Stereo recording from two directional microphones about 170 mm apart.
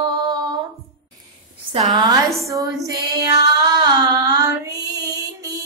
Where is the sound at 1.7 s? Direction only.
25° right (ahead or behind).